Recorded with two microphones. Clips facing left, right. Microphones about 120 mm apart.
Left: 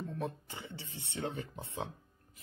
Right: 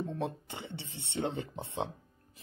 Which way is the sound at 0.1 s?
25° right (ahead or behind).